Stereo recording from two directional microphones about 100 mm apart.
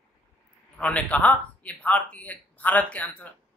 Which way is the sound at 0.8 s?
10° left (ahead or behind).